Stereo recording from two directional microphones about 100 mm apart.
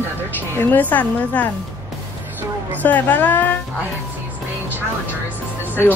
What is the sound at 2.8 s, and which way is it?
Speech, 15° left (ahead or behind).